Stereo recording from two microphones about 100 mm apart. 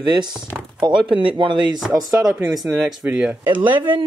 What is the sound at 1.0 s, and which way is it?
Speech, 50° right (ahead or behind).